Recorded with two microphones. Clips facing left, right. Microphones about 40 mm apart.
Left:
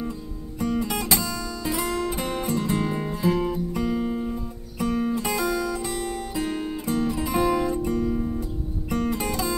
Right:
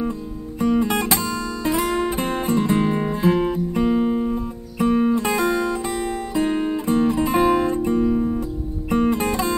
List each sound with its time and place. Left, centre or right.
0.6 s music: right